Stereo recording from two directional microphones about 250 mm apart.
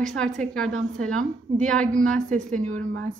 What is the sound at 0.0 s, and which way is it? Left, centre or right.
Speech, centre.